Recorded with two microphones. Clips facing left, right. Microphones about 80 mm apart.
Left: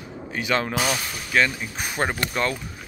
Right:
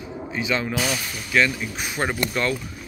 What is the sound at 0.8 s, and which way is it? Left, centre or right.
Speech, left.